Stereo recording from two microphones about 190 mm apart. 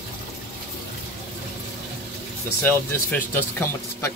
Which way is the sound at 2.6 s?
10° left (ahead or behind).